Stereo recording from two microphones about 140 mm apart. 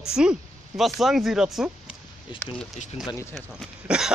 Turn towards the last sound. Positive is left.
turn(degrees=-5)  # may be behind; listen again after turning